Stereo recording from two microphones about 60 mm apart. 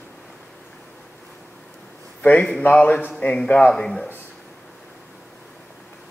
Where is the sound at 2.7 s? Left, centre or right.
Left.